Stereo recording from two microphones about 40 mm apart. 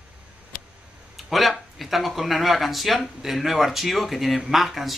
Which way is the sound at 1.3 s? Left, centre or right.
Centre.